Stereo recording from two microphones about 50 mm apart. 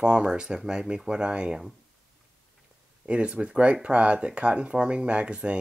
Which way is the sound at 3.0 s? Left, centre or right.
Right.